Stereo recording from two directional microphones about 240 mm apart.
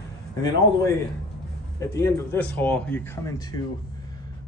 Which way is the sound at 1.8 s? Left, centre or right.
Centre.